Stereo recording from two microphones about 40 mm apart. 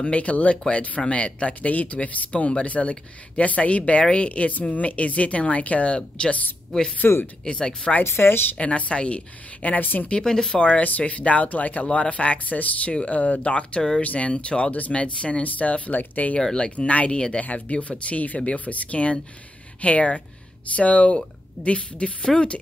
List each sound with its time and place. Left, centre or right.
0.0 s speech: left
5.9 s a woman's voice: left
6.7 s a woman's voice: centre
8.0 s a woman's voice: left
8.5 s speech: left
9.6 s speech: left
10.2 s speech: centre
10.5 s a woman's voice: left
10.8 s a woman's voice: left
15.4 s speech: left
16.3 s a woman's voice: centre
16.7 s a woman's voice: left